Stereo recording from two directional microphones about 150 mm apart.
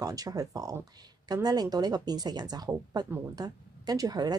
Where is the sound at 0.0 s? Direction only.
25° right (ahead or behind).